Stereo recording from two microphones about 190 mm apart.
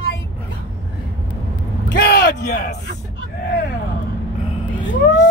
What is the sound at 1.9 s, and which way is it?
Vehicle, 55° left (ahead or behind).